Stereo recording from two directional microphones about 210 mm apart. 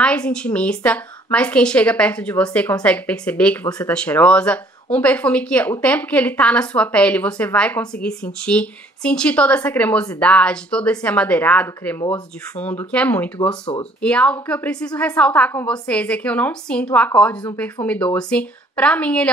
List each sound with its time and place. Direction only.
0.0 s speech: 5° left (ahead or behind)